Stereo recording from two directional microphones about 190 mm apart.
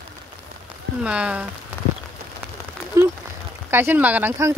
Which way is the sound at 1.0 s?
5° right (ahead or behind).